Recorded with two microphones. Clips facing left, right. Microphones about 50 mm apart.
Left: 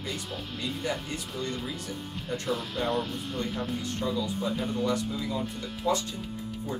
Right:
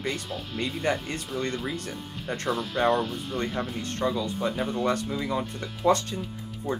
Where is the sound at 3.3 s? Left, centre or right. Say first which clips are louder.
Right 4 dB; centre.